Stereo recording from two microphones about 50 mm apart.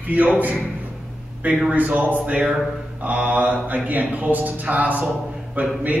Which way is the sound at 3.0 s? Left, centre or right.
Right.